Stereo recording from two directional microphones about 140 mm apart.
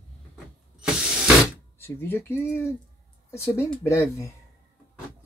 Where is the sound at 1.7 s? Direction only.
15° left (ahead or behind).